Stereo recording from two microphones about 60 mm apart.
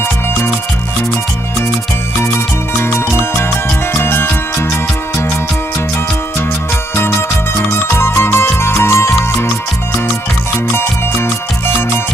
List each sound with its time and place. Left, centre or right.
2.8 s music: left
7.0 s music: left
10.7 s music: left